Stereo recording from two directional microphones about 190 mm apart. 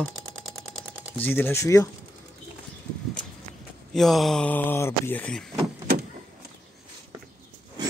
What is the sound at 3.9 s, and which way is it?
Speech, centre (ahead or behind).